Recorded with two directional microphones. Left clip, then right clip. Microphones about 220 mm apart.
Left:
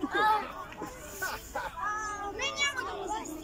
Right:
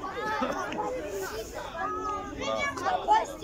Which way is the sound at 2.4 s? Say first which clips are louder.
Left 1 dB; 45° left (ahead or behind).